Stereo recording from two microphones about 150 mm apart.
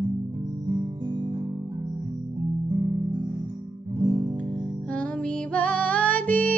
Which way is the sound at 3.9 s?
25° right (ahead or behind).